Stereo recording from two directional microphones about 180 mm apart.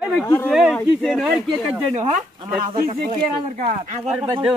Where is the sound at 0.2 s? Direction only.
15° left (ahead or behind).